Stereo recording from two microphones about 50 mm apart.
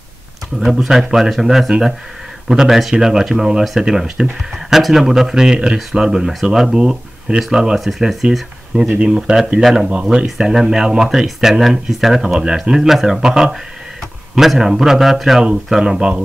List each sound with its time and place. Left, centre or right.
0.7 s speech: centre
5.8 s a man's voice: centre
6.0 s speech: centre
8.7 s a man's voice: centre
15.4 s speech: centre